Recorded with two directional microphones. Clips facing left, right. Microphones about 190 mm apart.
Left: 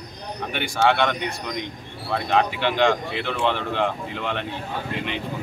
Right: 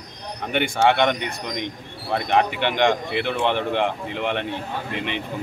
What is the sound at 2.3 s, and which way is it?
Speech, 20° right (ahead or behind).